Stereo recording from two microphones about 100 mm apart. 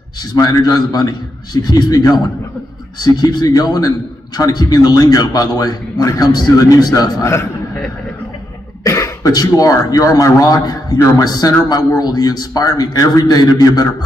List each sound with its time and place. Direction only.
0.2 s a man's voice: 40° left (ahead or behind)
8.8 s a man's voice: 35° left (ahead or behind)